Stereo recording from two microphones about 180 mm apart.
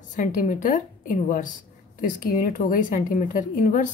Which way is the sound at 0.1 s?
45° left (ahead or behind).